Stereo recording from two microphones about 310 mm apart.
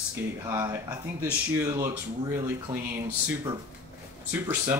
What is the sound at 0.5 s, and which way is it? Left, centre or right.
Speech, centre.